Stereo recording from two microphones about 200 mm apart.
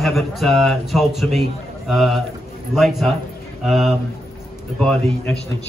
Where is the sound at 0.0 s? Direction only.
Centre (ahead or behind).